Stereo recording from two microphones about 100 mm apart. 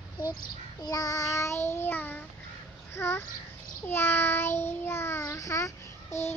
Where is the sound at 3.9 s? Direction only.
20° left (ahead or behind).